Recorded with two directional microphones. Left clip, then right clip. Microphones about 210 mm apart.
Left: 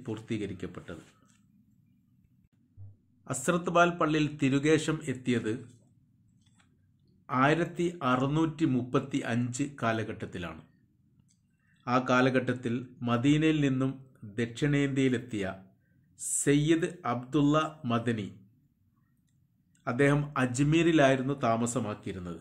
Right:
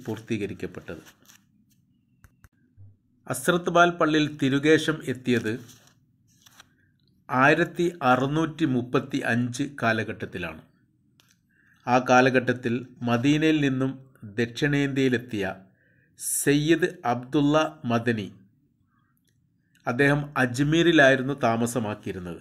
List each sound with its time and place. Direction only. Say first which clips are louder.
0.0 s speech: right 5 dB; 15° right (ahead or behind)
3.3 s speech: right 6 dB; 15° right (ahead or behind)
7.2 s speech: right 6 dB; 20° right (ahead or behind)
11.8 s speech: right 7 dB; 15° right (ahead or behind)
19.8 s speech: right 4 dB; 15° right (ahead or behind)